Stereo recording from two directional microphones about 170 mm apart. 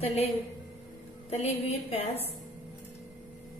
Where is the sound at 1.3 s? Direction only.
40° left (ahead or behind).